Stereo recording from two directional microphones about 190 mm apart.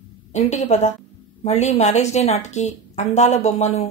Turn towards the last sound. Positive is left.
turn(degrees=35)  # may be behind; listen again after turning